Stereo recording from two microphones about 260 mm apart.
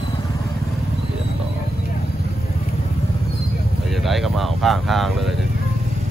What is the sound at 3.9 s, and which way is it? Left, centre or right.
Speech, centre.